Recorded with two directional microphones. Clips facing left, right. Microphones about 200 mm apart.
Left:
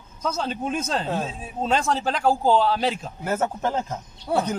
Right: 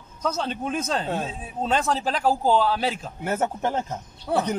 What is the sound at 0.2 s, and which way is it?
A man's voice, 5° left (ahead or behind).